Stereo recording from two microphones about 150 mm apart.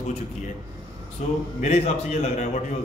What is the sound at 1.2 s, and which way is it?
Speech, 50° left (ahead or behind).